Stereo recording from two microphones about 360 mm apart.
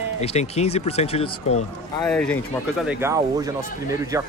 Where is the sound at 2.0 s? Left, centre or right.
Centre.